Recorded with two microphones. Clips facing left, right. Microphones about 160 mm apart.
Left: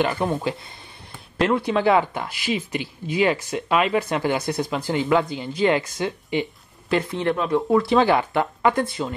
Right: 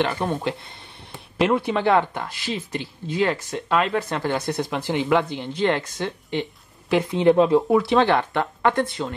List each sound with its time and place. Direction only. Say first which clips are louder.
0.0 s speech: left 1 dB; 5° left (ahead or behind)
6.9 s speech: right 1 dB; 5° right (ahead or behind)
7.3 s speech: right 5 dB; 20° right (ahead or behind)
7.7 s speech: even; 5° left (ahead or behind)